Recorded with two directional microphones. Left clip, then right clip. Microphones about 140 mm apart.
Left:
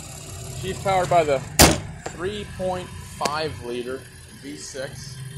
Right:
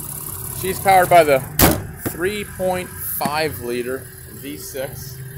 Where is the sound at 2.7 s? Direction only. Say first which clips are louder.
Right 5 dB; 35° right (ahead or behind).